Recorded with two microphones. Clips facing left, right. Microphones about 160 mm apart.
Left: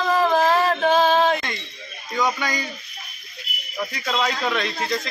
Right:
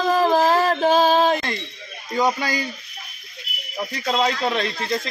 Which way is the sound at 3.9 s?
30° right (ahead or behind).